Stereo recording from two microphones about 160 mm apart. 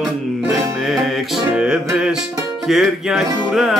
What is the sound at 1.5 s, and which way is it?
Music, 5° right (ahead or behind).